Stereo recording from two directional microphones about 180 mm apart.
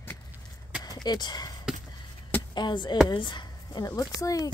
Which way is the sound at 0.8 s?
25° left (ahead or behind).